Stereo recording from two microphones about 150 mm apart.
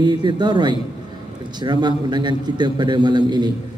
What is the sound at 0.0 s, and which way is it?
A man's voice, 30° right (ahead or behind).